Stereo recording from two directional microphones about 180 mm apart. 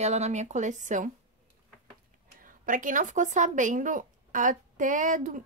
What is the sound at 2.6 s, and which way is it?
A woman's voice, 45° right (ahead or behind).